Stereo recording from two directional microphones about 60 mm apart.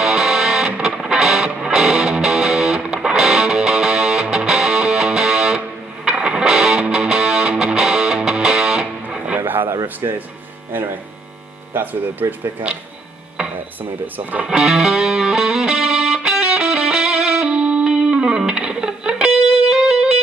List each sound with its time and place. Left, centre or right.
0.0 s music: centre
9.4 s a sound: right
9.9 s speech: right
11.7 s speech: right
14.0 s speech: right
14.6 s music: centre